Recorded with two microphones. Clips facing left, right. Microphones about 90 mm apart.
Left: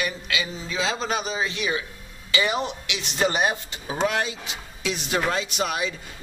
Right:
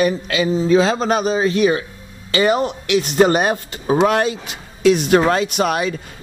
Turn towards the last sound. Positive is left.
turn(degrees=-55)  # may be behind; listen again after turning